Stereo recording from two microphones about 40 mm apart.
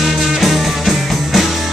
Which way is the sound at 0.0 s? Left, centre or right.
Centre.